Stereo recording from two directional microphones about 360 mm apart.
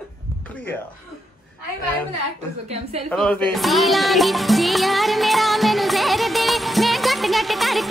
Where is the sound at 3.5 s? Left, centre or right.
Centre.